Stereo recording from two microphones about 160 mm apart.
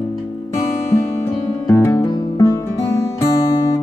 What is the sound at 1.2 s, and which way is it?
Music, 20° left (ahead or behind).